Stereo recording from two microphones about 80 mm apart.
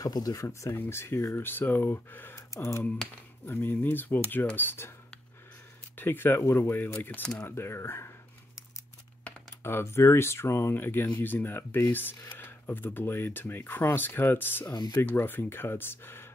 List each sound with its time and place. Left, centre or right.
0.0 s speech: left
3.4 s speech: left
5.9 s speech: left
9.6 s speech: left
14.7 s speech: left
15.0 s speech: left